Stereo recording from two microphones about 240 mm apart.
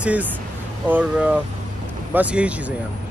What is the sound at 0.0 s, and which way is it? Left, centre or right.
Speech, centre.